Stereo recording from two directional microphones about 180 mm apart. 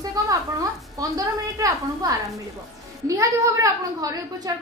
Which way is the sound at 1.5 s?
15° right (ahead or behind).